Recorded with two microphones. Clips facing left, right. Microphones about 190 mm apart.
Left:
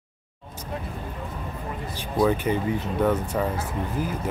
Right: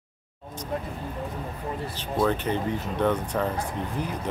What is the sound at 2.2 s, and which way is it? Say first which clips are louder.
Speech: left 3 dB; 10° left (ahead or behind).